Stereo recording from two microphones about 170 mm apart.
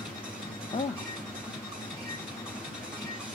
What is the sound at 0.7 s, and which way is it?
Speech, 45° left (ahead or behind).